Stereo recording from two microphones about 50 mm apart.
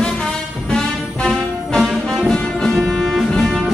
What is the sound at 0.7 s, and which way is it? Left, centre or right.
Music, centre.